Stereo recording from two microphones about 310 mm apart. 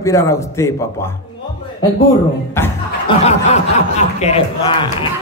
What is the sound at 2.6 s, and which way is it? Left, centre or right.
Speech, centre.